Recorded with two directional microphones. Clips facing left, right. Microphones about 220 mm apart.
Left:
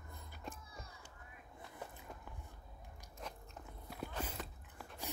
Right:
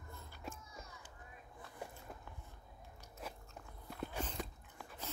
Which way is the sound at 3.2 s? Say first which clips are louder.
Right 1 dB; 5° right (ahead or behind).